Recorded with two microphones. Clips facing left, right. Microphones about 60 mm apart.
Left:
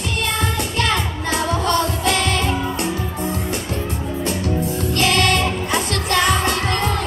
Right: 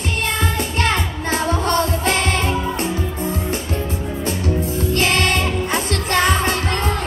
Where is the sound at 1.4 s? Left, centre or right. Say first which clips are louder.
Even; right.